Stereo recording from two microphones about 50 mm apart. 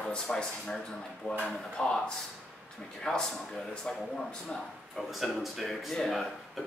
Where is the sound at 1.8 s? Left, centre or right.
Centre.